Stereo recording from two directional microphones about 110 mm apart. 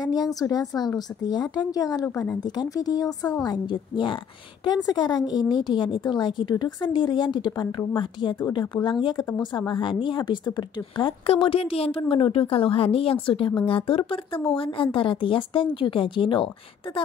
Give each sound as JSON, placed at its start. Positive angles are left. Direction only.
{"t": 0.0, "sound": "a woman's voice", "side_deg": 35}
{"t": 3.4, "sound": "a woman's voice", "side_deg": 45}
{"t": 11.2, "sound": "a woman's voice", "side_deg": 55}